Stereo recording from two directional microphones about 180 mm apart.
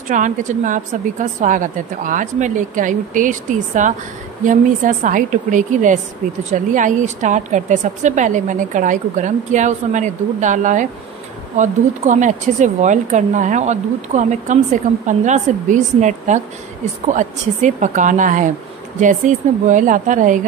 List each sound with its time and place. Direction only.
0.1 s a woman's voice: 45° right (ahead or behind)